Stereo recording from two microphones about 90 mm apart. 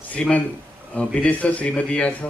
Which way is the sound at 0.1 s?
15° left (ahead or behind).